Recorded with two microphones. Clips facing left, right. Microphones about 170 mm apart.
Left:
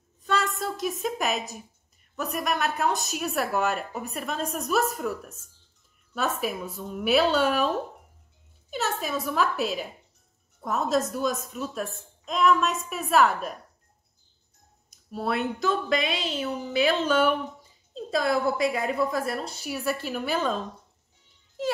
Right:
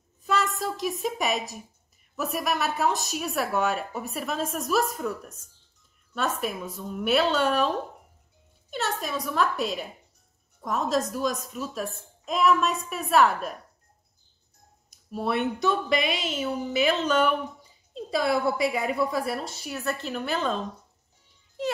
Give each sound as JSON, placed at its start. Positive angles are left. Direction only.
{"t": 0.2, "sound": "a woman's voice", "side_deg": 0}
{"t": 14.9, "sound": "speech", "side_deg": 0}